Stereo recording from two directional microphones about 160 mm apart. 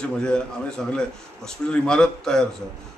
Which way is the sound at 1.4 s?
5° left (ahead or behind).